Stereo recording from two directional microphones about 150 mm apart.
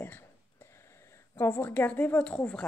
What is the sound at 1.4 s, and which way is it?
A woman's voice, 15° left (ahead or behind).